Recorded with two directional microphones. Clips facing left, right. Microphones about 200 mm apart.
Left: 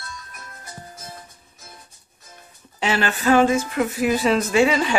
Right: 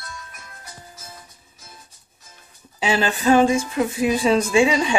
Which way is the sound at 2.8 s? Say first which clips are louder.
Right 1 dB; 15° right (ahead or behind).